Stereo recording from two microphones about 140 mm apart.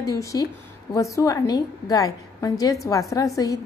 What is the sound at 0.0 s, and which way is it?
A woman's voice, 25° left (ahead or behind).